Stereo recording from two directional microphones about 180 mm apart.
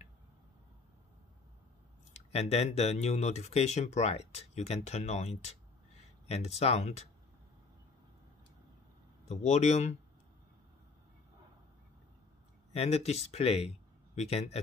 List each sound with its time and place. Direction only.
2.1 s speech: 35° left (ahead or behind)
9.3 s speech: 40° left (ahead or behind)
12.7 s speech: 35° left (ahead or behind)